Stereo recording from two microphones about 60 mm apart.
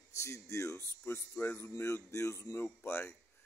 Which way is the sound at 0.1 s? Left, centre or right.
Left.